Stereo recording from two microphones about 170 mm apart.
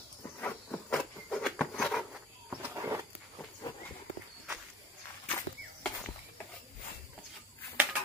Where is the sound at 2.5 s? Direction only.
15° right (ahead or behind).